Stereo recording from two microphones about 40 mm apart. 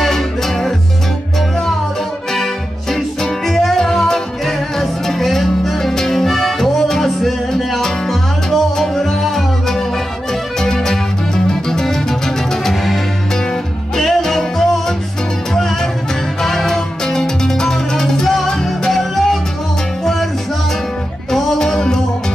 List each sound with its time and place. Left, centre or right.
0.0 s music: centre
2.3 s accordion: centre
3.2 s music: centre
21.3 s music: centre